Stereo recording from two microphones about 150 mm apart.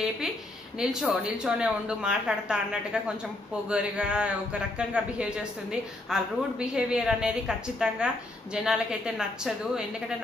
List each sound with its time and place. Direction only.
0.7 s a woman's voice: 5° right (ahead or behind)